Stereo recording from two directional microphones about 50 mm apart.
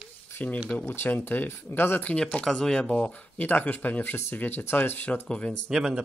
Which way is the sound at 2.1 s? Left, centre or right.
Left.